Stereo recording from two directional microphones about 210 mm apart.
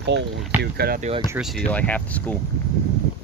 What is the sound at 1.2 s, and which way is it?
Speech, 5° right (ahead or behind).